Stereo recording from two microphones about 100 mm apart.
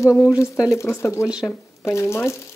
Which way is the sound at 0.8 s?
30° left (ahead or behind).